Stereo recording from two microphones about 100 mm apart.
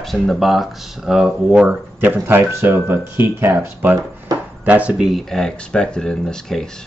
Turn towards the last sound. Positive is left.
turn(degrees=5)  # may be behind; listen again after turning